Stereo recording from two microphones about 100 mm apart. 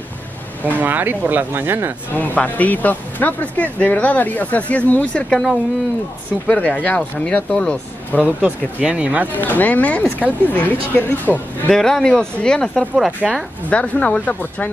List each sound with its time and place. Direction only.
0.7 s speech: 20° right (ahead or behind)
2.1 s speech: 15° left (ahead or behind)
5.3 s speech: 5° left (ahead or behind)
8.2 s speech: 15° right (ahead or behind)
9.3 s speech: 20° left (ahead or behind)
11.7 s speech: 5° left (ahead or behind)
12.9 s speech: 5° right (ahead or behind)
13.7 s speech: 15° left (ahead or behind)